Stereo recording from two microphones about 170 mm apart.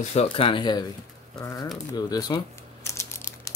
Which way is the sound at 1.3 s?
20° left (ahead or behind).